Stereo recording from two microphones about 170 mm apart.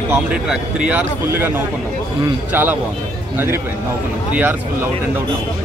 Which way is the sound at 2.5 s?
10° right (ahead or behind).